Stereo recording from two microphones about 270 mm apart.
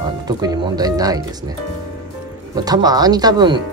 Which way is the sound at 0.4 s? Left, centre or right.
Centre.